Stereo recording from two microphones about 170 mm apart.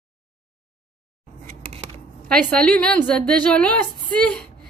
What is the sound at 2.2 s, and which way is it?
A woman's voice, 5° left (ahead or behind).